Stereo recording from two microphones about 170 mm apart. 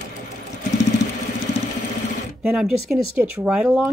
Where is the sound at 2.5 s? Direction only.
Centre (ahead or behind).